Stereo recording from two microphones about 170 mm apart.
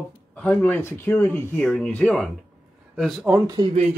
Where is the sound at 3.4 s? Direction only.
25° right (ahead or behind).